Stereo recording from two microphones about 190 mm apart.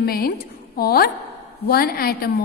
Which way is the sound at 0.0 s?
55° left (ahead or behind).